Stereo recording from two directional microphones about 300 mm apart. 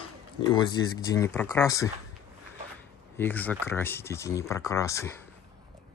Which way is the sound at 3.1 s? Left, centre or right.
Centre.